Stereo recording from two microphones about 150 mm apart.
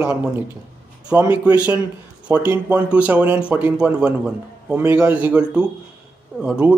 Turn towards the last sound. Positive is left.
turn(degrees=-5)  # may be behind; listen again after turning